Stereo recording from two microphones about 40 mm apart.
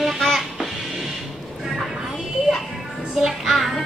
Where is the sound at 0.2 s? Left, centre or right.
Centre.